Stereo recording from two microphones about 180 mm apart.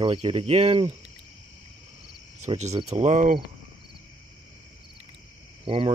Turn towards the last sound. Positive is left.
turn(degrees=-30)  # may be behind; listen again after turning